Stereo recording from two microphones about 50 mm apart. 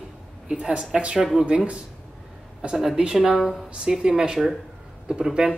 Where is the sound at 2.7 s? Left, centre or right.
Centre.